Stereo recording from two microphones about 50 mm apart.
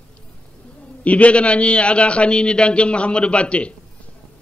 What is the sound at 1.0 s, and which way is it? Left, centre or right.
A man's voice, left.